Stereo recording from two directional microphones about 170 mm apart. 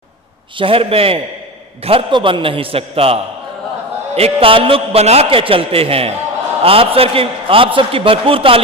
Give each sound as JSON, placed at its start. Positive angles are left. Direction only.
{"t": 0.6, "sound": "a man's voice", "side_deg": -35}